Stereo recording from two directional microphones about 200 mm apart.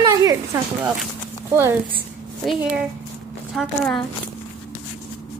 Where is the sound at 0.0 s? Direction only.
15° right (ahead or behind).